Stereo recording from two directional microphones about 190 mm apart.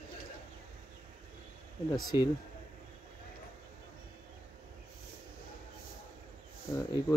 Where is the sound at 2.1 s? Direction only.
15° right (ahead or behind).